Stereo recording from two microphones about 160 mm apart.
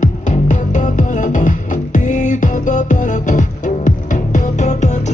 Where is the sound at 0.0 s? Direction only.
50° left (ahead or behind).